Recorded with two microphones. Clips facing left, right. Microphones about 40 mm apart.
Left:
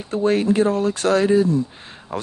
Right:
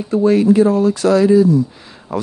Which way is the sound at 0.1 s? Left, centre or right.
Left.